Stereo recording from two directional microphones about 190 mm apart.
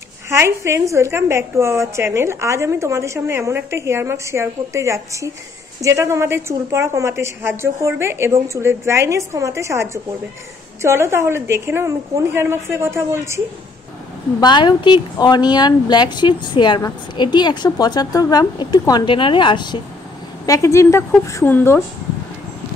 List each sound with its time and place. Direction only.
0.3 s a woman's voice: 15° right (ahead or behind)
14.4 s a woman's voice: 25° left (ahead or behind)